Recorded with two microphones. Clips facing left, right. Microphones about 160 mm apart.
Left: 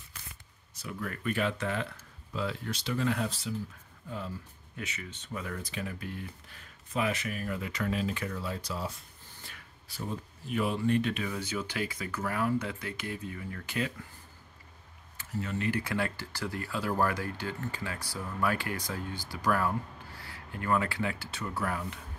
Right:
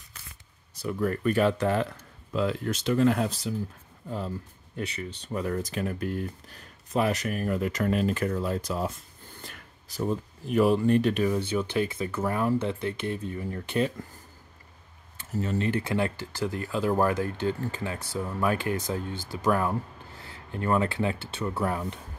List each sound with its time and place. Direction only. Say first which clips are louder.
0.8 s speech: right 8 dB; 40° right (ahead or behind)
2.0 s speech: right 7 dB; 55° right (ahead or behind)
4.7 s speech: right 7 dB; 35° right (ahead or behind)
11.3 s speech: right 8 dB; 30° right (ahead or behind)
15.1 s speech: right 6 dB; 35° right (ahead or behind)